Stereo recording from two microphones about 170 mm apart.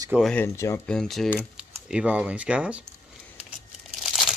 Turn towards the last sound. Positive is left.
turn(degrees=0)  # may be behind; listen again after turning